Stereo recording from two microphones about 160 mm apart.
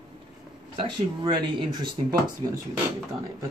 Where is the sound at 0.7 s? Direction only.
30° right (ahead or behind).